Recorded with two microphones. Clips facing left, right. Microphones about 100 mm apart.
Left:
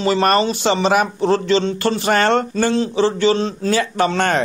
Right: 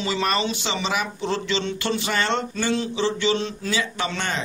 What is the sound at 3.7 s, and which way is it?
Speech, 50° left (ahead or behind).